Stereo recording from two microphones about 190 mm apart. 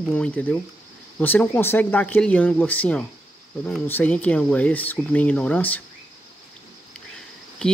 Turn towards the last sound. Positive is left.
turn(degrees=5)  # may be behind; listen again after turning